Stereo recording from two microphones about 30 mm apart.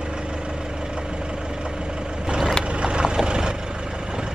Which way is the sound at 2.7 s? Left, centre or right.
Right.